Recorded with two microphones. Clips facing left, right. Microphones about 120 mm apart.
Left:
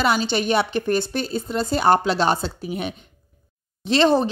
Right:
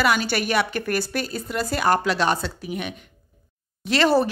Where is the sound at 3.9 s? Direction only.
25° left (ahead or behind).